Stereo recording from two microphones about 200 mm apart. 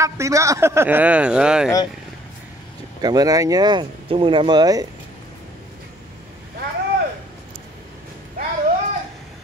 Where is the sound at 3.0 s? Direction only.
20° right (ahead or behind).